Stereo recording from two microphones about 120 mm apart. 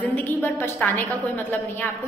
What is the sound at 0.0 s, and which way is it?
A woman's voice, 15° left (ahead or behind).